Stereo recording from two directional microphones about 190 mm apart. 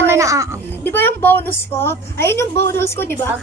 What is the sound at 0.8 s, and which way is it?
A woman's voice, 10° left (ahead or behind).